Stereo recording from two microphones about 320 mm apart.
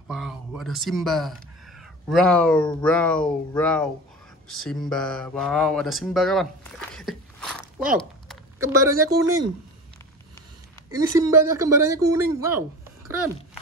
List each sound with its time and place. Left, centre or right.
0.1 s speech: centre
7.9 s a sound: centre
8.9 s speech: right
10.9 s speech: centre